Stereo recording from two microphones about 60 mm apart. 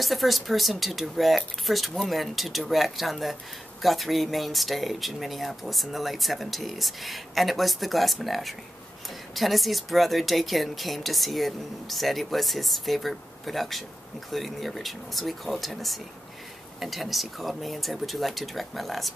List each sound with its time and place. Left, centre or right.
0.0 s speech: centre